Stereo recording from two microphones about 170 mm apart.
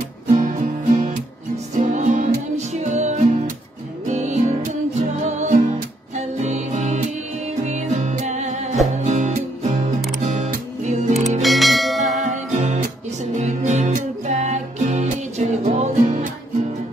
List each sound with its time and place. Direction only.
0.3 s music: 50° right (ahead or behind)
11.4 s bell: centre (ahead or behind)
12.5 s music: 45° right (ahead or behind)